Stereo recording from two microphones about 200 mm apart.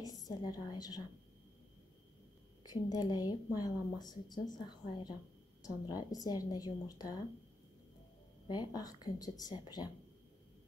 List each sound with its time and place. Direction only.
0.4 s a woman's voice: 20° left (ahead or behind)
2.6 s a woman's voice: 20° left (ahead or behind)
8.5 s a woman's voice: 20° left (ahead or behind)